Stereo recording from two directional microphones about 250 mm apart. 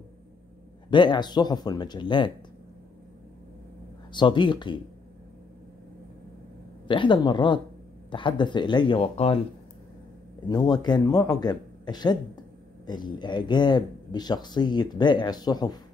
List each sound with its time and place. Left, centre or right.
0.8 s speech: centre
4.1 s speech: centre
6.9 s speech: centre
10.5 s speech: centre